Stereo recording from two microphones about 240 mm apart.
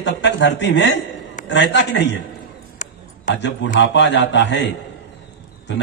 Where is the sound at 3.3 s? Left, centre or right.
Left.